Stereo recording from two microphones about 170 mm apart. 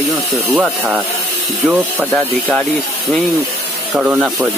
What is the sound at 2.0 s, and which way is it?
Speech, 10° left (ahead or behind).